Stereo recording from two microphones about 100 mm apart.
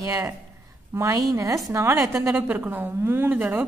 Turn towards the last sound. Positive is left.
turn(degrees=-20)  # may be behind; listen again after turning